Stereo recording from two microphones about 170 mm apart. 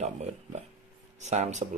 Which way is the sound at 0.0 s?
40° right (ahead or behind).